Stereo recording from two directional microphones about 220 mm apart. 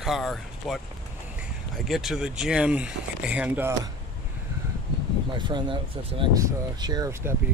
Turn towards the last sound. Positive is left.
turn(degrees=-15)  # may be behind; listen again after turning